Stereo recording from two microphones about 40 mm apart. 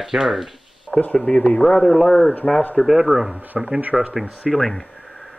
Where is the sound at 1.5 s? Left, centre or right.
Centre.